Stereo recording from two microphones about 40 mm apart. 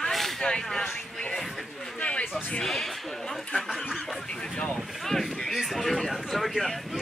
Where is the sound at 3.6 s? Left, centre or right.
Centre.